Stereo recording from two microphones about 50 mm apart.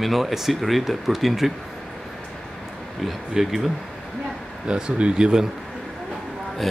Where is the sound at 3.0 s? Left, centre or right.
Centre.